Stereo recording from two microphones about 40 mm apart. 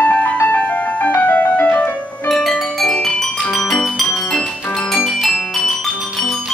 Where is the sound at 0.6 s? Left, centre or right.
Left.